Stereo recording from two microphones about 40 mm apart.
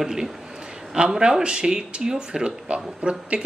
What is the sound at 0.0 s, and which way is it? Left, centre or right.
A man's voice, centre.